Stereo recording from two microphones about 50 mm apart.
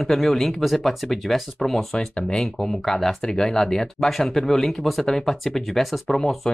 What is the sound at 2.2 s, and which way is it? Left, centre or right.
Speech, left.